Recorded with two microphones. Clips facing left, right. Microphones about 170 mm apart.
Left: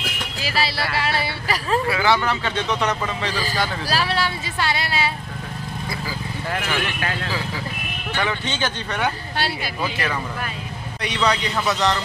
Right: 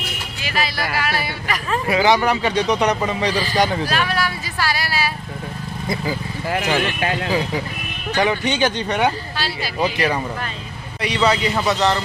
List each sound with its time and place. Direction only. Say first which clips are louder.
0.4 s speech: even; 35° left (ahead or behind)
1.9 s a man's voice: right 7 dB; 20° right (ahead or behind)
3.9 s speech: right 1 dB; 30° left (ahead or behind)
5.9 s a man's voice: right 8 dB; 20° right (ahead or behind)
11.0 s a man's voice: right 4 dB; centre (ahead or behind)